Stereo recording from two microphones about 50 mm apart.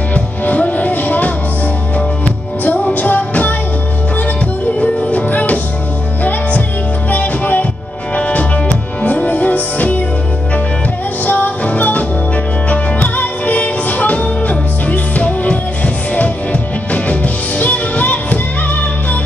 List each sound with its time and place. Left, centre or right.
0.1 s music: left
2.6 s music: left
4.7 s music: left
7.1 s music: left
11.2 s music: left
11.6 s music: left